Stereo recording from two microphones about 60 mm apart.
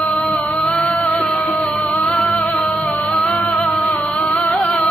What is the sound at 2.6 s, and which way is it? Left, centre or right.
Music, centre.